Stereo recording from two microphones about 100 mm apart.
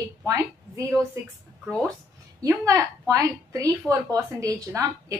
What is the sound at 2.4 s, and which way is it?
Speech, 35° right (ahead or behind).